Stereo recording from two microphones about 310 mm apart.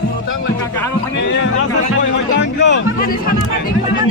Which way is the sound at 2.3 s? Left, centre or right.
Left.